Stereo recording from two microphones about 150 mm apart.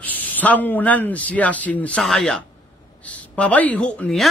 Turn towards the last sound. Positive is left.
turn(degrees=5)  # may be behind; listen again after turning